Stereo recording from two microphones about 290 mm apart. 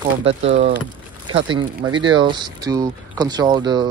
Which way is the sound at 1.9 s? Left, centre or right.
Centre.